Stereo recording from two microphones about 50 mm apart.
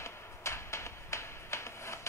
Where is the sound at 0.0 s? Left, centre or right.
Left.